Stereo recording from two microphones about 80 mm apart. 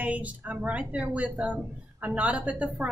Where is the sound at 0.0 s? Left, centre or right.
Centre.